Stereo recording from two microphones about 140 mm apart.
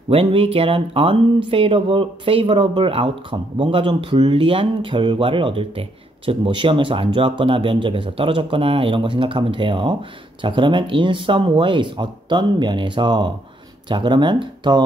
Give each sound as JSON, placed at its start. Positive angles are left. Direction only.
{"t": 0.1, "sound": "speech", "side_deg": -40}